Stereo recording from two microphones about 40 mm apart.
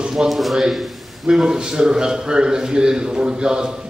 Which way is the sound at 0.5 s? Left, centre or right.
Centre.